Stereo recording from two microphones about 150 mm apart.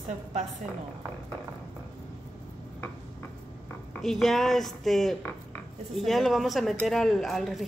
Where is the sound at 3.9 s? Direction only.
Centre (ahead or behind).